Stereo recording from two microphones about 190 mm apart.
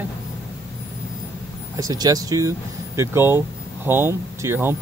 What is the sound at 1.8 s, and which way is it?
Speech, 20° right (ahead or behind).